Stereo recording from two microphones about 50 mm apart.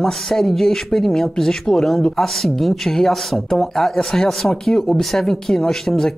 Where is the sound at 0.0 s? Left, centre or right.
Centre.